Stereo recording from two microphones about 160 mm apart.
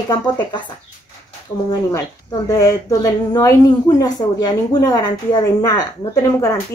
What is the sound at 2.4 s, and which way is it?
Speech, 20° left (ahead or behind).